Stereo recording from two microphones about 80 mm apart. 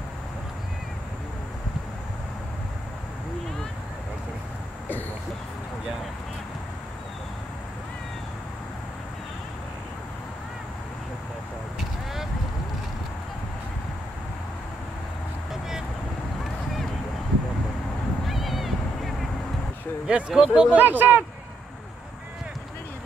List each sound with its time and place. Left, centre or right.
18.2 s a sound: centre
20.1 s speech: centre
20.7 s speech: right